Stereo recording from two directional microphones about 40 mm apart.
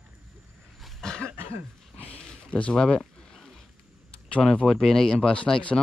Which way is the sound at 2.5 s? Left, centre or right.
Left.